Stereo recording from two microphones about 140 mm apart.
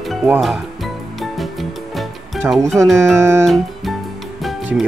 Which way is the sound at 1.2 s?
Centre (ahead or behind).